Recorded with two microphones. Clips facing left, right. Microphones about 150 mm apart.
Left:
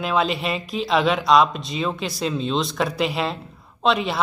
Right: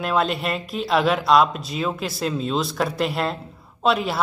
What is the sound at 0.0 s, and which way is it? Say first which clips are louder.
Speech: even; centre (ahead or behind).